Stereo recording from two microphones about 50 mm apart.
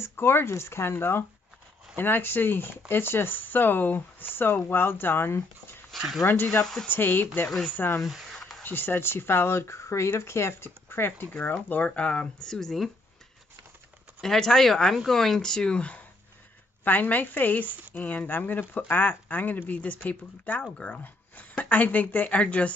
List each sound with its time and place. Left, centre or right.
0.1 s speech: left
5.9 s speech: centre
6.2 s speech: left
6.6 s speech: centre
6.9 s speech: left
11.4 s speech: left
12.4 s speech: centre
14.2 s speech: centre
15.8 s speech: left
16.8 s speech: left